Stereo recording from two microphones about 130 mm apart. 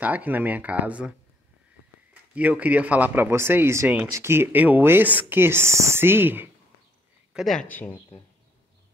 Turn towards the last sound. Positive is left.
turn(degrees=-5)  # may be behind; listen again after turning